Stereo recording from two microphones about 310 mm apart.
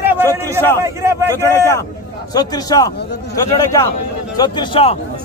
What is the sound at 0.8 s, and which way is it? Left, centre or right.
Speech, centre.